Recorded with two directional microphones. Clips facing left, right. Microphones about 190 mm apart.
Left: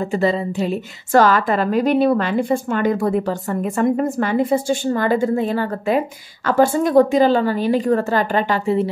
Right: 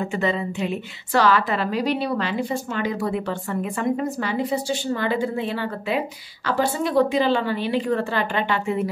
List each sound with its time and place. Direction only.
0.0 s a woman's voice: 35° left (ahead or behind)